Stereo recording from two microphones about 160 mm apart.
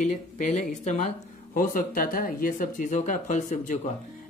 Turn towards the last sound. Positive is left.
turn(degrees=50)  # may be behind; listen again after turning